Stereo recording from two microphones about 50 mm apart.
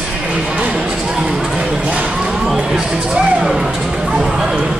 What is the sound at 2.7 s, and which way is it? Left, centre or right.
Music, centre.